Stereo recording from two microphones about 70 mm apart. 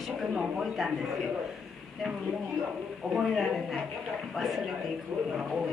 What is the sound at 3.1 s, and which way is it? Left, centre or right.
A woman's voice, centre.